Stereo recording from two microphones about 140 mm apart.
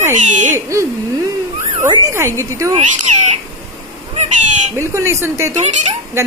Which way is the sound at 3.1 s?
55° right (ahead or behind).